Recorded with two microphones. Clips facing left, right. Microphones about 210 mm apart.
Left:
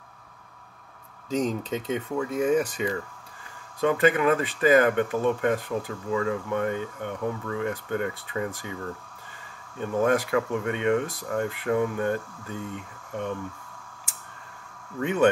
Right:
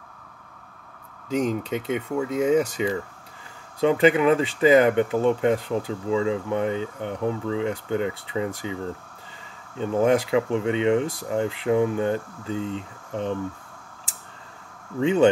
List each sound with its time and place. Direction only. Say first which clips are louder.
1.3 s speech: right 2 dB; 10° right (ahead or behind)
2.3 s speech: right 3 dB; 25° right (ahead or behind)
9.8 s speech: right 3 dB; 25° right (ahead or behind)
15.0 s speech: right 5 dB; 25° right (ahead or behind)